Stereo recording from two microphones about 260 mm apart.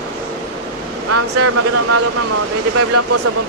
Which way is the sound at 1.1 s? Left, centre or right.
Right.